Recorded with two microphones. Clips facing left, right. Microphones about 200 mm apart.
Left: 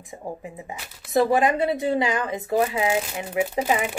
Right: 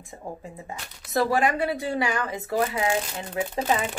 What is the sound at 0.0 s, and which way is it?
Speech, 15° left (ahead or behind).